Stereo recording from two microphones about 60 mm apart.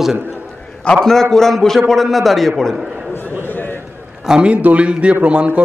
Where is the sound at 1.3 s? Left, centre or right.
Centre.